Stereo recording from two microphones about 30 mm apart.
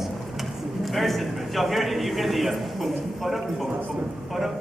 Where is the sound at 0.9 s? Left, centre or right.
Centre.